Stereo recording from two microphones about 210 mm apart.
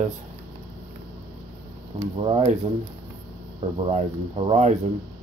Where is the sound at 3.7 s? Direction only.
25° right (ahead or behind).